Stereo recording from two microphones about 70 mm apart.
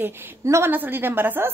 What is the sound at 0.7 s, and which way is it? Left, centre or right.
Speech, right.